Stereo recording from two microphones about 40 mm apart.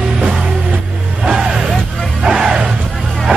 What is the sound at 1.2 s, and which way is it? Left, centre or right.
Music, centre.